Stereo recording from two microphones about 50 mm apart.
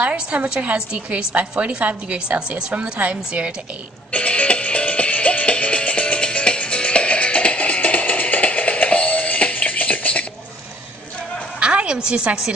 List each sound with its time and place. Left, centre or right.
0.0 s a woman's voice: right
4.1 s music: left
11.6 s music: right